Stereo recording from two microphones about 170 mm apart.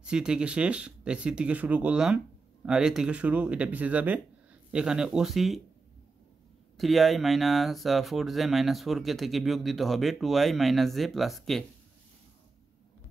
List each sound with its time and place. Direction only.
0.0 s speech: 5° right (ahead or behind)
6.8 s speech: centre (ahead or behind)